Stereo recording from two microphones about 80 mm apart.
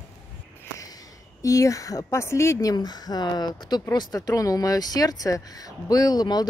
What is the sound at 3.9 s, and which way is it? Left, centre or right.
Speech, left.